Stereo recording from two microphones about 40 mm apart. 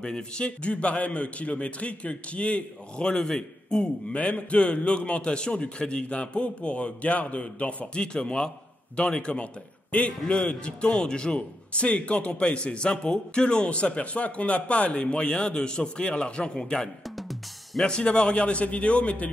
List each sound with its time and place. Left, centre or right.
0.0 s a man's voice: left
4.1 s a man's voice: left
11.3 s a man's voice: left